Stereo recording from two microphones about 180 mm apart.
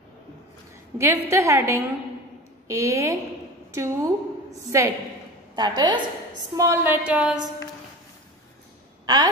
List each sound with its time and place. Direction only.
0.9 s a woman's voice: 15° right (ahead or behind)
9.0 s speech: 20° right (ahead or behind)